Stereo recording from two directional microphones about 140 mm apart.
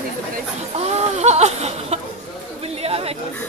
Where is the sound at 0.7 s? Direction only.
50° right (ahead or behind).